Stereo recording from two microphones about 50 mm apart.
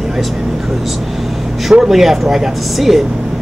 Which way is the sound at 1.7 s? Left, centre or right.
Centre.